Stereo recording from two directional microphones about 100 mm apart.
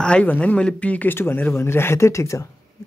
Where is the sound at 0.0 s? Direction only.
10° left (ahead or behind).